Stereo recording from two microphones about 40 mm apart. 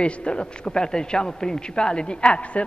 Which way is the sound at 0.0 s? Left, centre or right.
Left.